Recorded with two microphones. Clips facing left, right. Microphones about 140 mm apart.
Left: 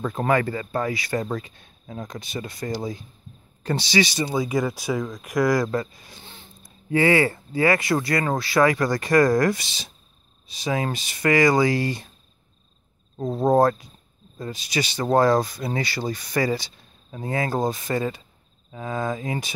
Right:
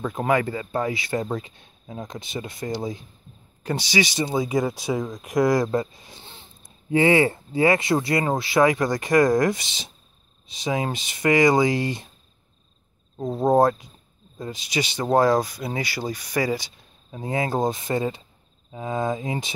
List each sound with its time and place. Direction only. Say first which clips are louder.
0.0 s speech: even; 15° right (ahead or behind)
13.5 s speech: even; 15° right (ahead or behind)